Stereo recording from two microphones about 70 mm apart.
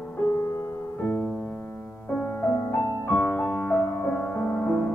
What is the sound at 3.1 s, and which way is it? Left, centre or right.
Music, centre.